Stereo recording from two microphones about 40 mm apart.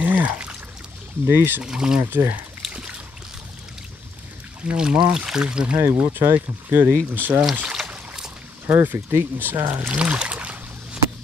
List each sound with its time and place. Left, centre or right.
0.0 s pour: right
1.2 s speech: right
1.6 s speech: centre
2.0 s speech: right
2.6 s a sound: centre
4.7 s speech: centre
5.8 s speech: right
8.6 s speech: right
9.8 s boat: right